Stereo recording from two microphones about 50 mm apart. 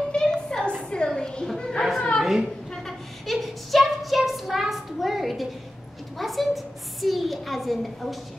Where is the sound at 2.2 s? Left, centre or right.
Centre.